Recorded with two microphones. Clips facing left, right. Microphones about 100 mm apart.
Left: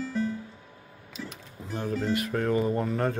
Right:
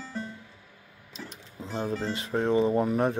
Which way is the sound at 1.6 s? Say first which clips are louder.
Even; 25° right (ahead or behind).